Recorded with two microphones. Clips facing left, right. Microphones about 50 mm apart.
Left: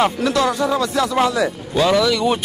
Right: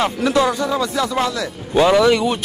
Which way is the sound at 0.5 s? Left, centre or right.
Centre.